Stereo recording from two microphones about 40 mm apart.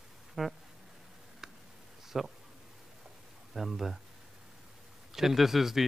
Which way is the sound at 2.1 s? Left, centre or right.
Centre.